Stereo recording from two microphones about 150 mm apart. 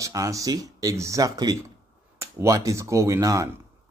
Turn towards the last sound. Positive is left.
turn(degrees=-20)  # may be behind; listen again after turning